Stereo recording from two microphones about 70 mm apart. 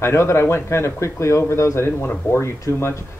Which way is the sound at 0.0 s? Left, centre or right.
Left.